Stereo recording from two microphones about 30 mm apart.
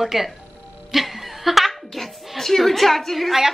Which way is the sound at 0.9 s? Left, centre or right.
Centre.